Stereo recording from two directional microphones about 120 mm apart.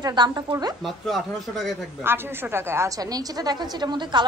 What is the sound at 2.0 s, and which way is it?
A woman's voice, 20° right (ahead or behind).